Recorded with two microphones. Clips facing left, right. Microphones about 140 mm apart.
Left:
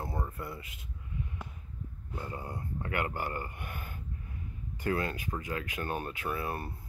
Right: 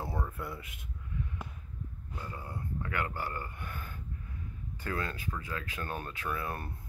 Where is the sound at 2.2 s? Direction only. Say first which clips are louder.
Left 3 dB; 20° left (ahead or behind).